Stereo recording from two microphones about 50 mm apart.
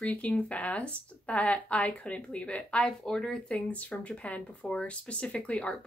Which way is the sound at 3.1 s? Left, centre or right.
Centre.